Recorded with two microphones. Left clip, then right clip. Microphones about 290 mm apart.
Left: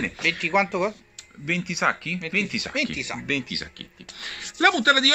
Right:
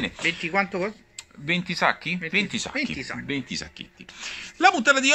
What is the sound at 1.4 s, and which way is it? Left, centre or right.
Speech, centre.